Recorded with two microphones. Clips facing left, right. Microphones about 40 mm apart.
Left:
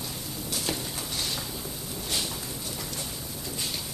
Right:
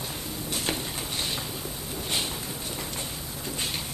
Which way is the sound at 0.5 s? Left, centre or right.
Right.